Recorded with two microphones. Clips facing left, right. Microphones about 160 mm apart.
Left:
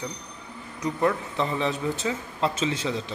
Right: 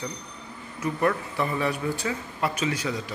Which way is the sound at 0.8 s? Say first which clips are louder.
Even; 20° left (ahead or behind).